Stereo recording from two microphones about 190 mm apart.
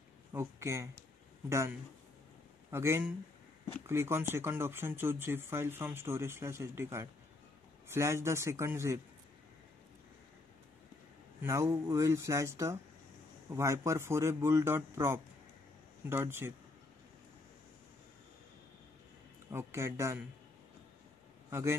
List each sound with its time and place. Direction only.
0.3 s speech: 15° right (ahead or behind)
11.4 s speech: 15° right (ahead or behind)
19.5 s speech: 15° right (ahead or behind)
21.5 s a man's voice: 15° right (ahead or behind)